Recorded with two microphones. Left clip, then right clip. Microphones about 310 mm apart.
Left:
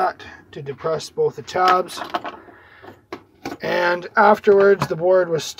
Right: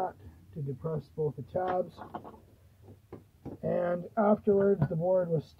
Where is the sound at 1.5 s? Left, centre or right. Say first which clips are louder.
Left 16 dB; centre.